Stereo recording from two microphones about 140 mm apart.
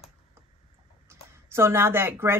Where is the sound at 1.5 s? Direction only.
20° right (ahead or behind).